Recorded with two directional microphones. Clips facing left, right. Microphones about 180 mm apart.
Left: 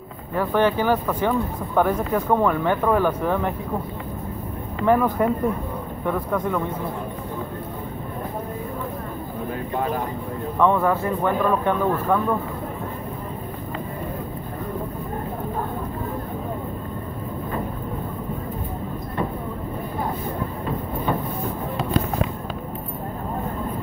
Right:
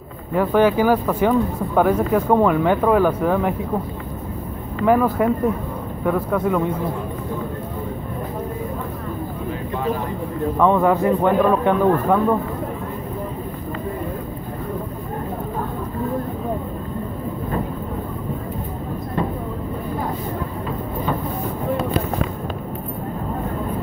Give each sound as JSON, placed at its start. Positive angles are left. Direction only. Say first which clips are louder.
{"t": 0.4, "sound": "speech", "louder": "right 4 dB", "side_deg": -10}
{"t": 4.8, "sound": "speech", "louder": "right 2 dB", "side_deg": -5}
{"t": 10.6, "sound": "speech", "louder": "right 3 dB", "side_deg": -15}